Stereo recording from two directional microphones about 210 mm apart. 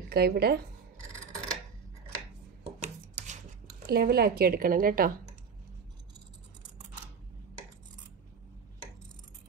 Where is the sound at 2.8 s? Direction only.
35° right (ahead or behind).